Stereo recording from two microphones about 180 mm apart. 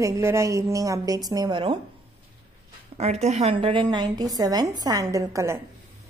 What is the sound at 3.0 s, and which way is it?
A woman's voice, 35° right (ahead or behind).